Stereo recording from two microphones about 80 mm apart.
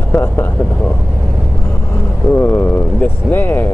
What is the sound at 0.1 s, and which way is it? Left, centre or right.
Speech, left.